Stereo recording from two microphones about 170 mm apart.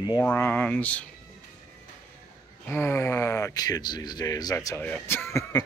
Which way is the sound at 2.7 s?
15° left (ahead or behind).